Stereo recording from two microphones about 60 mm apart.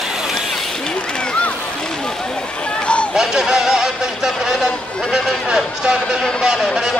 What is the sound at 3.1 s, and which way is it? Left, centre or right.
Speech, centre.